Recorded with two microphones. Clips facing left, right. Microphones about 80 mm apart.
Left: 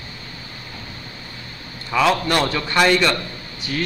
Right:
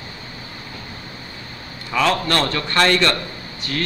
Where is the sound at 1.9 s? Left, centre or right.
Centre.